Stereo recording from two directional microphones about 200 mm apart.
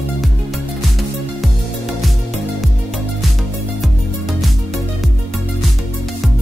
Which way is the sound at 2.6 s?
Centre (ahead or behind).